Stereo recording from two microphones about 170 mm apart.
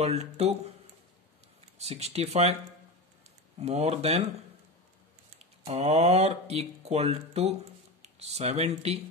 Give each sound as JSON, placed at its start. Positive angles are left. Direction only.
{"t": 0.0, "sound": "speech", "side_deg": -40}
{"t": 1.8, "sound": "speech", "side_deg": -40}
{"t": 3.5, "sound": "speech", "side_deg": -40}
{"t": 5.7, "sound": "speech", "side_deg": -40}